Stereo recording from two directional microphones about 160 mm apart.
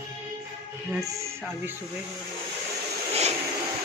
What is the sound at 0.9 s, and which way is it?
Speech, 15° right (ahead or behind).